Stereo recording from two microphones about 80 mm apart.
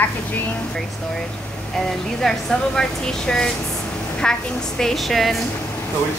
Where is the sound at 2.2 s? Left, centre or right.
Centre.